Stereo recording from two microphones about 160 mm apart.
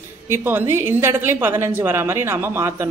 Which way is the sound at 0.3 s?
15° right (ahead or behind).